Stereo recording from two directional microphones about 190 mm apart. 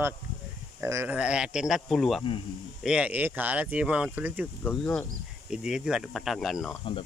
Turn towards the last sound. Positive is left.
turn(degrees=0)  # may be behind; listen again after turning